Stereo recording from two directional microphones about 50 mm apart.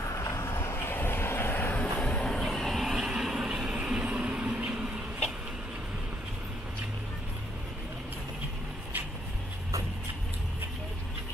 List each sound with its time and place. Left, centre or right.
0.2 s vehicle: left
0.8 s vehicle: left
1.8 s vehicle: left
2.2 s vehicle: centre
2.8 s vehicle: centre
4.0 s vehicle: right